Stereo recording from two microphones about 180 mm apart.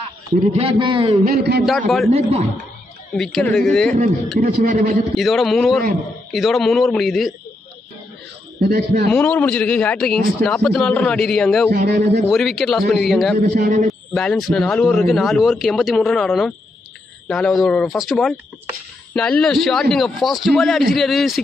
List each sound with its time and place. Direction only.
0.5 s a man's voice: 30° right (ahead or behind)
1.2 s a man's voice: 60° right (ahead or behind)
1.7 s speech: centre (ahead or behind)
2.0 s a man's voice: 35° right (ahead or behind)
3.2 s speech: centre (ahead or behind)
4.4 s a man's voice: 50° right (ahead or behind)
5.1 s speech: centre (ahead or behind)
8.5 s a man's voice: 65° right (ahead or behind)
9.1 s speech: 10° left (ahead or behind)
11.7 s a man's voice: 70° right (ahead or behind)
12.3 s speech: centre (ahead or behind)
13.6 s a man's voice: 40° right (ahead or behind)
14.1 s speech: centre (ahead or behind)